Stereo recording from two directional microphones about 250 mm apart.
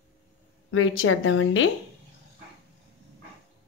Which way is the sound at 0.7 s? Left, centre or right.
Left.